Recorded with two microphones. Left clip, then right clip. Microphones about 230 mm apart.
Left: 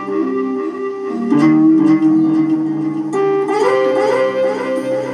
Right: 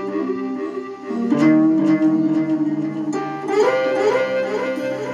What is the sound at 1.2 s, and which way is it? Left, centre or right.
Music, right.